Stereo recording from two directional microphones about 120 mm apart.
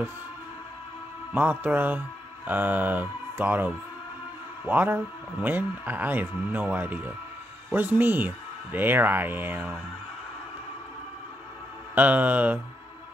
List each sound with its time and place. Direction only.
1.3 s a man's voice: 15° right (ahead or behind)
11.9 s a man's voice: 15° right (ahead or behind)